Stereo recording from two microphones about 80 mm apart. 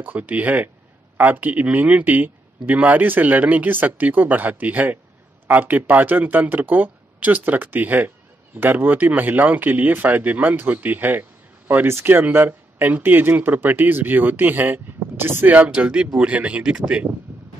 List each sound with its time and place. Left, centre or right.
0.0 s speech: right